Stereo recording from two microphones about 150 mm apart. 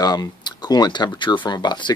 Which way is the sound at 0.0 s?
25° left (ahead or behind).